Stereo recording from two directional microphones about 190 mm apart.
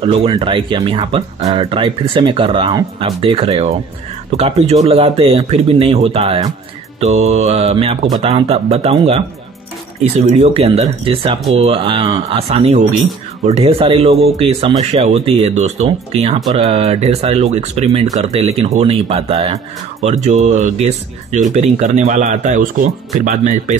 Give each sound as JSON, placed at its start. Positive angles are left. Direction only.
{"t": 0.0, "sound": "speech", "side_deg": -30}